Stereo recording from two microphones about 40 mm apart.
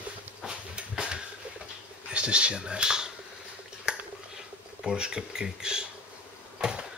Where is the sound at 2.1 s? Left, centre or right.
Right.